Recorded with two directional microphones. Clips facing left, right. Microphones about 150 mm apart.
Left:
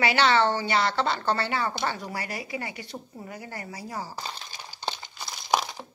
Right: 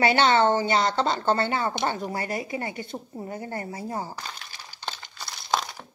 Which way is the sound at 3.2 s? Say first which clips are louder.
Right 8 dB; 25° right (ahead or behind).